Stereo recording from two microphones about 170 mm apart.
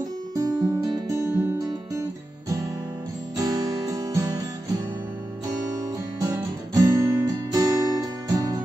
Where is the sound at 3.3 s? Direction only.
20° right (ahead or behind).